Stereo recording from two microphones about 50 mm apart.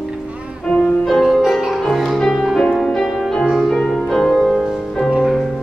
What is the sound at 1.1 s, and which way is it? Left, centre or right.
Music, centre.